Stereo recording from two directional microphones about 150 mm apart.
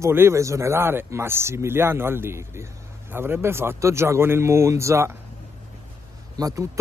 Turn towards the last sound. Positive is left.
turn(degrees=-20)  # may be behind; listen again after turning